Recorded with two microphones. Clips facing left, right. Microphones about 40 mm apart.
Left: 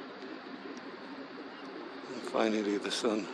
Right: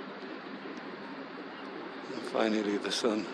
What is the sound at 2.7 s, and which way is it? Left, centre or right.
Speech, right.